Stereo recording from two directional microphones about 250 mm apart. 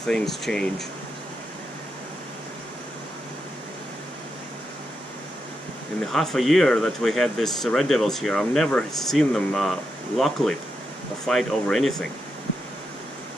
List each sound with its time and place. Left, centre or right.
0.0 s speech: centre
6.1 s speech: centre